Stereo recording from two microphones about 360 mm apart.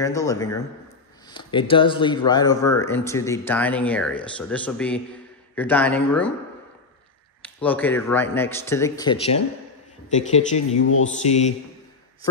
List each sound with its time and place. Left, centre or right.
0.0 s speech: centre
7.4 s speech: centre
10.8 s speech: left
11.2 s speech: centre